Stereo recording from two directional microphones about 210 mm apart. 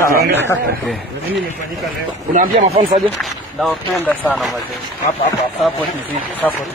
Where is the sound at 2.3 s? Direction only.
30° right (ahead or behind).